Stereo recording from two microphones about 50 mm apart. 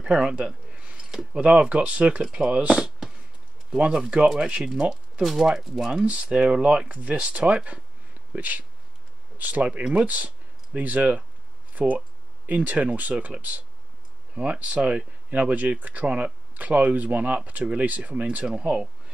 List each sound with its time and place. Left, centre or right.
0.0 s a sound: centre
1.1 s speech: right
5.2 s speech: centre